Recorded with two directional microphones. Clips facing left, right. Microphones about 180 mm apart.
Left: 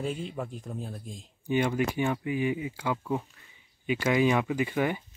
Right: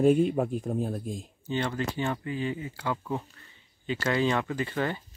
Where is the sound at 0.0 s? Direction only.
55° right (ahead or behind).